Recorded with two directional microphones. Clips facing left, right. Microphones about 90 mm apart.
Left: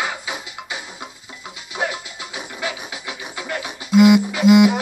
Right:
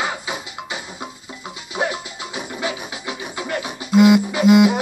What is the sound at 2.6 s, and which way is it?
Music, 25° right (ahead or behind).